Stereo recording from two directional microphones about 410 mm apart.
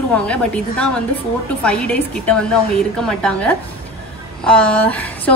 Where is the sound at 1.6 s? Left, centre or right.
Centre.